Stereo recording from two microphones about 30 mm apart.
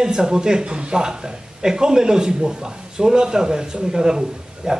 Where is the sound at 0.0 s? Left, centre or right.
Right.